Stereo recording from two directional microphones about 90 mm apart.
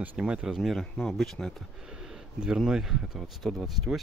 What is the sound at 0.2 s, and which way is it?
Speech, 10° right (ahead or behind).